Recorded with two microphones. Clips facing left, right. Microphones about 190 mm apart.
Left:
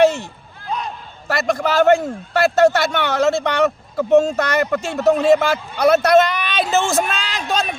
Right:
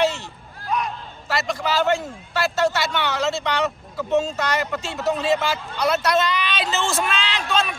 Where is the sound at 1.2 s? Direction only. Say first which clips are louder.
Left 6 dB; 50° left (ahead or behind).